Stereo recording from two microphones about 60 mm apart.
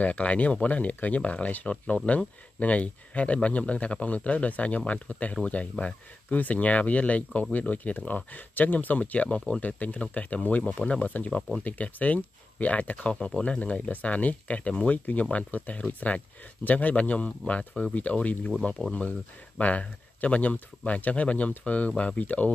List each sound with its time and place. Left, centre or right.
0.0 s speech: left